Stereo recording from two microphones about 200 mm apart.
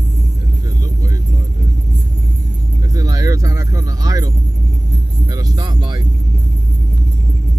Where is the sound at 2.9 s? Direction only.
15° right (ahead or behind).